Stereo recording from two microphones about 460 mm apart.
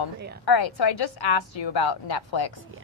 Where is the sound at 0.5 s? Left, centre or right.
Left.